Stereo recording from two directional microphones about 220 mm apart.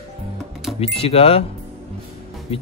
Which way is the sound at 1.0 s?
25° left (ahead or behind).